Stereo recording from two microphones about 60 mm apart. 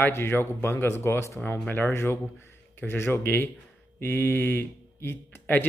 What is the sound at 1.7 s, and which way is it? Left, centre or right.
Speech, left.